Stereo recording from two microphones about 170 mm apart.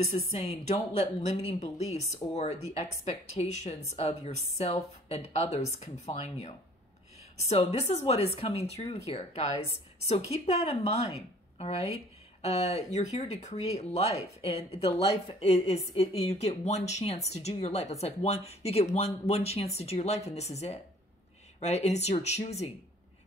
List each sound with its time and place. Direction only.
0.0 s speech: 40° left (ahead or behind)